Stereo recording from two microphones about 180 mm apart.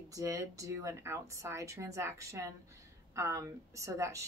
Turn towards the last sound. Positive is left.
turn(degrees=-15)  # may be behind; listen again after turning